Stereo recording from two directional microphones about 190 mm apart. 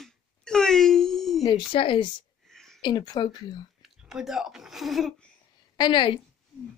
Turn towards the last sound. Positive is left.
turn(degrees=25)  # may be behind; listen again after turning